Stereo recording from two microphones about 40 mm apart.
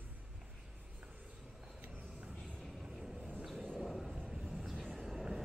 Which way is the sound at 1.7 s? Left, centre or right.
Right.